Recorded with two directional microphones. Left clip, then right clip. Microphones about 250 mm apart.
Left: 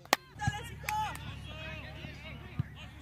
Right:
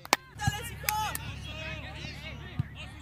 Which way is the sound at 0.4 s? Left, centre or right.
Right.